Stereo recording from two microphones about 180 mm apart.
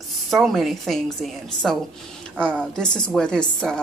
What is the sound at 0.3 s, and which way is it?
A woman's voice, centre (ahead or behind).